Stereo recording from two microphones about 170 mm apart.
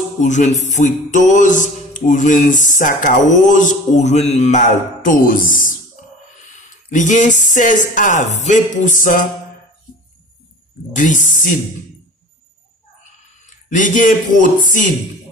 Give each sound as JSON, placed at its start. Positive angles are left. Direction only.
{"t": 0.2, "sound": "music", "side_deg": 45}
{"t": 6.9, "sound": "music", "side_deg": 50}
{"t": 10.9, "sound": "music", "side_deg": 50}
{"t": 13.0, "sound": "a sound", "side_deg": 50}